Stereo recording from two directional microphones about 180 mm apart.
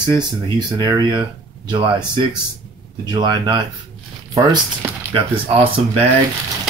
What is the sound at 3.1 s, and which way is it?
Speech, 25° right (ahead or behind).